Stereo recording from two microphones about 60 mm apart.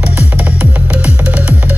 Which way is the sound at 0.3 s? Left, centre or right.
Right.